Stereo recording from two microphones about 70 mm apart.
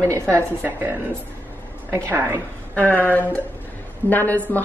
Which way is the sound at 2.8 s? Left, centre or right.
Left.